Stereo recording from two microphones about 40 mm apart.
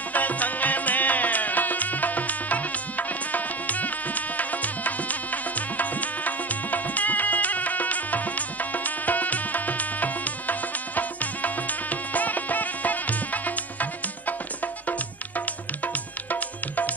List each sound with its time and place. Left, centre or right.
0.1 s music: left